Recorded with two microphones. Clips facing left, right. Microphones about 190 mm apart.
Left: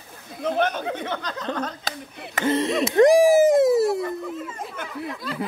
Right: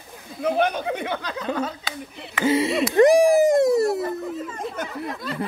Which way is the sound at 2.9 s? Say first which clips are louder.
Even; centre (ahead or behind).